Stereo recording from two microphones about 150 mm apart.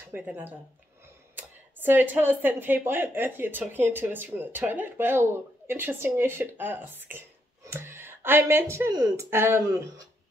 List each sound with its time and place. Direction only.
0.1 s speech: 15° right (ahead or behind)